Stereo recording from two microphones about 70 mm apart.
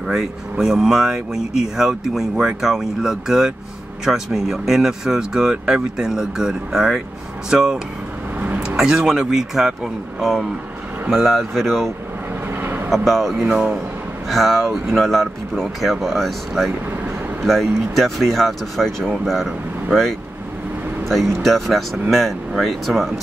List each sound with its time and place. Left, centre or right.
0.0 s speech: centre
11.1 s speech: centre
12.4 s vehicle: right
12.9 s speech: centre
14.3 s speech: centre